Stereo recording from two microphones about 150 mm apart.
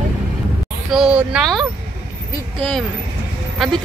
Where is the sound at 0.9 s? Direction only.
5° right (ahead or behind).